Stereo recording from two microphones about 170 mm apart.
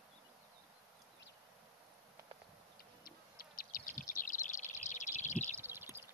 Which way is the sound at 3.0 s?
55° left (ahead or behind).